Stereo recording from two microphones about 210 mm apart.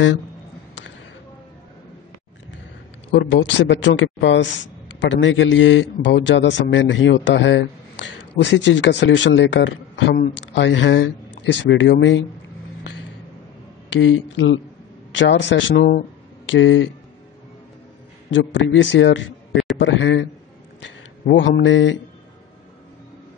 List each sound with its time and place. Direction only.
3.1 s a man's voice: 60° left (ahead or behind)
14.0 s a man's voice: 65° left (ahead or behind)
18.3 s a man's voice: 60° left (ahead or behind)